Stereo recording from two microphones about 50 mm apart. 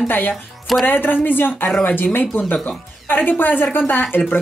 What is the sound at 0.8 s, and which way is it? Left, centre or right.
A woman's voice, left.